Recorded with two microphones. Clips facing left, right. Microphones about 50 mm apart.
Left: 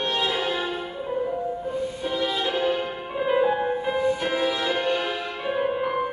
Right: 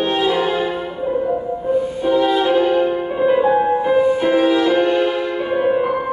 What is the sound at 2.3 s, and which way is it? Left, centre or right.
Music, centre.